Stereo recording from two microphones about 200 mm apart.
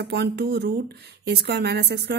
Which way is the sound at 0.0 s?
55° right (ahead or behind).